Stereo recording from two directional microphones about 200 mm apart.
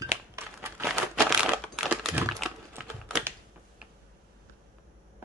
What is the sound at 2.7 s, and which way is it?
Typing, 10° right (ahead or behind).